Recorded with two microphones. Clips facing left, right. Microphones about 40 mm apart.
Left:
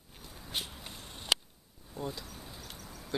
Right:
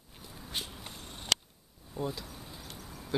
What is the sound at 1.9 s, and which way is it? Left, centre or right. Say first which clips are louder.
Insect: right 3 dB; centre.